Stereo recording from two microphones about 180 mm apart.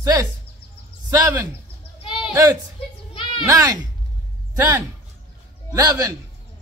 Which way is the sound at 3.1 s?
30° left (ahead or behind).